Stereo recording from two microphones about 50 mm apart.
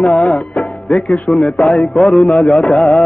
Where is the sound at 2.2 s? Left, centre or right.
Left.